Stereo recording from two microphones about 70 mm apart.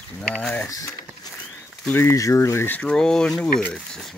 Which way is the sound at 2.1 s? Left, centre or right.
Left.